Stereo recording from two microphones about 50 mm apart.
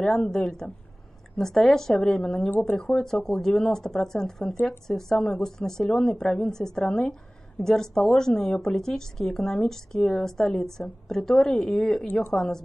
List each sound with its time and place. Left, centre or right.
0.1 s speech: centre
2.5 s speech: left
2.8 s speech: centre